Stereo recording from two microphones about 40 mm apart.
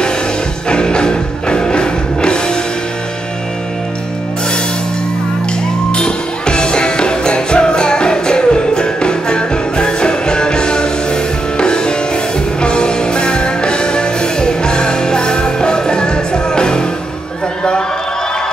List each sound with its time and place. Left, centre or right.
0.7 s music: left
5.9 s music: left